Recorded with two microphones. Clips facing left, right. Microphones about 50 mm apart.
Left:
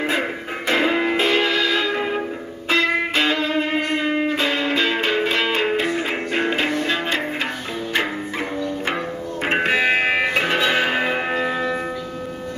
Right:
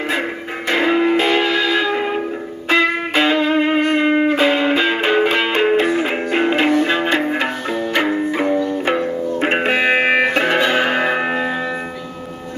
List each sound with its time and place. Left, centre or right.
0.7 s music: centre
9.6 s music: centre